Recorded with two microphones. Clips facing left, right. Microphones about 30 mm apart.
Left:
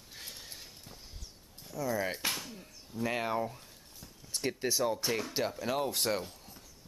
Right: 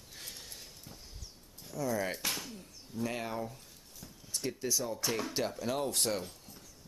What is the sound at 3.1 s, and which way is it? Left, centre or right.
Speech, left.